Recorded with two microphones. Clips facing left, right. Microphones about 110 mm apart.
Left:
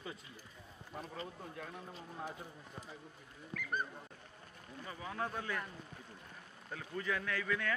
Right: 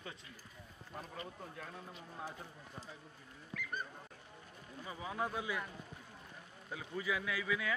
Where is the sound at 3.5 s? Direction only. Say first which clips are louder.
Left 4 dB; 50° left (ahead or behind).